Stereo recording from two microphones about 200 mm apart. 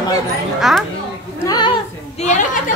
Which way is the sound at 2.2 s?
35° left (ahead or behind).